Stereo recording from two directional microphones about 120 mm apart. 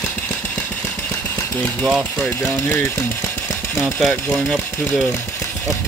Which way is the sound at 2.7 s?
20° left (ahead or behind).